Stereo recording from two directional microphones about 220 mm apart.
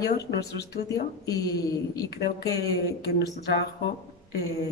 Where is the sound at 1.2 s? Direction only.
15° left (ahead or behind).